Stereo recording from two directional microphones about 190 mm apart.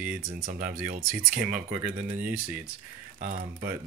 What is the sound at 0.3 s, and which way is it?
Speech, 45° right (ahead or behind).